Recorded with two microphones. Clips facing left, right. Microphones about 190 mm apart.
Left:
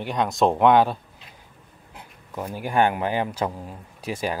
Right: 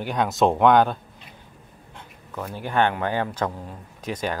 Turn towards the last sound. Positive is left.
turn(degrees=10)  # may be behind; listen again after turning